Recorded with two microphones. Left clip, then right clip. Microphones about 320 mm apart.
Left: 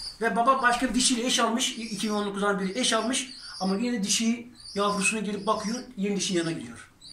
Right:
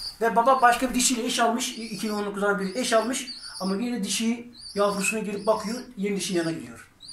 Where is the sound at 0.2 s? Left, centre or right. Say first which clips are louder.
Right 3 dB; centre.